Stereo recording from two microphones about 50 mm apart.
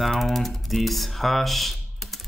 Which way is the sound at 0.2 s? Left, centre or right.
Centre.